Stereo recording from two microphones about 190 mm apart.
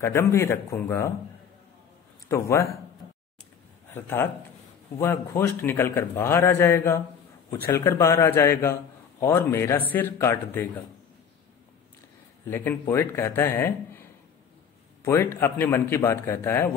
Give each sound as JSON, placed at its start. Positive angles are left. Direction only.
{"t": 0.0, "sound": "a man's voice", "side_deg": 15}
{"t": 2.2, "sound": "a man's voice", "side_deg": 15}
{"t": 3.9, "sound": "a man's voice", "side_deg": 10}
{"t": 12.4, "sound": "a man's voice", "side_deg": 10}
{"t": 15.0, "sound": "a man's voice", "side_deg": 15}